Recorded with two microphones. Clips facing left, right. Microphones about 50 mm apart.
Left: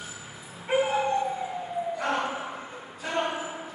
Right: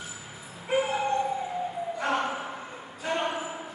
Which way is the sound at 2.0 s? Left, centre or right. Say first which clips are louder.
Right 3 dB; centre.